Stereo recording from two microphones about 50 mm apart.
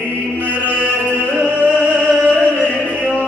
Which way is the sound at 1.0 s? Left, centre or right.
Right.